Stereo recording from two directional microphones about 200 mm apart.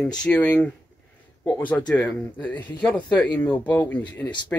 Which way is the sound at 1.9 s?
10° left (ahead or behind).